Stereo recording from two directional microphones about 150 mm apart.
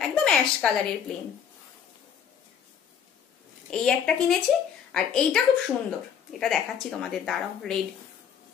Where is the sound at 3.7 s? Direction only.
5° left (ahead or behind).